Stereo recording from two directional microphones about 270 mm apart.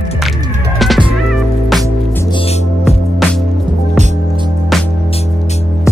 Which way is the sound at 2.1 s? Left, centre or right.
Centre.